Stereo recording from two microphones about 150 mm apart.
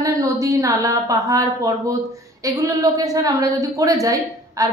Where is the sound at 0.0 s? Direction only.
20° right (ahead or behind).